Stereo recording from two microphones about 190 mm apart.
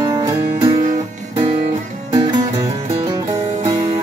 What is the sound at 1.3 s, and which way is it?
Guitar, 30° right (ahead or behind).